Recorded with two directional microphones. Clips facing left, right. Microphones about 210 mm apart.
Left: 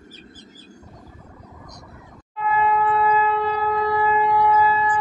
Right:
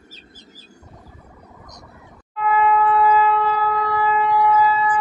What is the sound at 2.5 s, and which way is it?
Shofar, 25° left (ahead or behind).